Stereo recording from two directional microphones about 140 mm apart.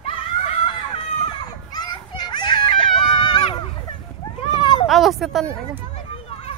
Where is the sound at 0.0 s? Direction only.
45° left (ahead or behind).